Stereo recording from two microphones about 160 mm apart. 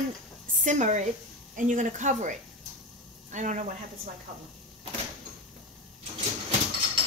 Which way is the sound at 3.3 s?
50° right (ahead or behind).